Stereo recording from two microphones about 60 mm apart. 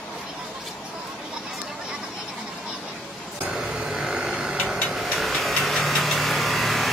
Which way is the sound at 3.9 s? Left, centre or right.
Centre.